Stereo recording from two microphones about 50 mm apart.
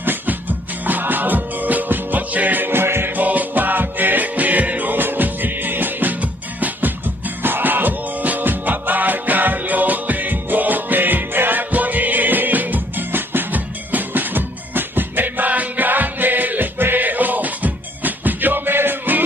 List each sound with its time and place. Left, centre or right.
0.0 s music: right
3.2 s music: right
7.4 s music: right